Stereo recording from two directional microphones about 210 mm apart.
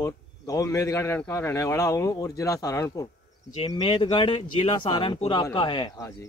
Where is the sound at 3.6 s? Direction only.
30° left (ahead or behind).